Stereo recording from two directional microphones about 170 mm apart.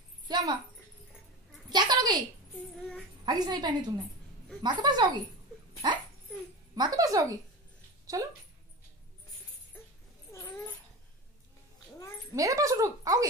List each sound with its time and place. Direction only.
0.3 s a sound: 25° right (ahead or behind)
1.7 s a sound: 25° right (ahead or behind)
3.3 s speech: 25° right (ahead or behind)
6.7 s speech: 25° right (ahead or behind)
10.3 s dog: 20° left (ahead or behind)
12.4 s speech: 20° right (ahead or behind)